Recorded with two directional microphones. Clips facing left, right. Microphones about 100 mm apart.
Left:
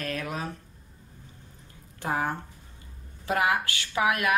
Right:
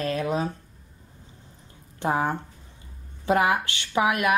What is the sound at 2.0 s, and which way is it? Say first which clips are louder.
Speech: right 4 dB; 25° right (ahead or behind).